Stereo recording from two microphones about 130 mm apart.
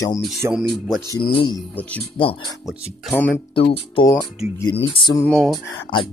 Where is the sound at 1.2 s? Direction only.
40° left (ahead or behind).